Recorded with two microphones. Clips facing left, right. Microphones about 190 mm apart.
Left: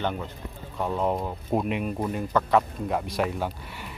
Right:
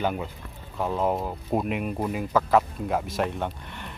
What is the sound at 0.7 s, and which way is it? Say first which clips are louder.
Speech: right 1 dB; centre (ahead or behind).